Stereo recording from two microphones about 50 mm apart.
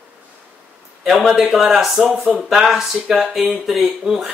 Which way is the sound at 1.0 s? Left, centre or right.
Centre.